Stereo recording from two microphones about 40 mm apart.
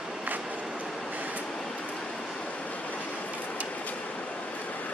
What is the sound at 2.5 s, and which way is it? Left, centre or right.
Vehicle, left.